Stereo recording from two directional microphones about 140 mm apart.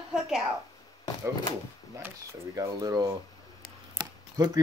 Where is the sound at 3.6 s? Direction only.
30° right (ahead or behind).